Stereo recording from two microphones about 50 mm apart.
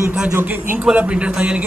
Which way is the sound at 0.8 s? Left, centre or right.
Right.